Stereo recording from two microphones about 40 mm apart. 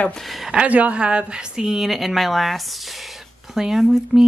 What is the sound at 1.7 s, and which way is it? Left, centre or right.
Speech, centre.